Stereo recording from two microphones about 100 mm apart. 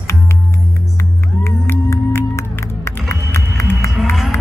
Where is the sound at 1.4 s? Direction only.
25° left (ahead or behind).